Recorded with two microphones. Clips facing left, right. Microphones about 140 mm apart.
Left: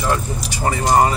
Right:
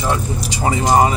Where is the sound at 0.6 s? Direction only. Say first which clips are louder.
Right 1 dB; 15° right (ahead or behind).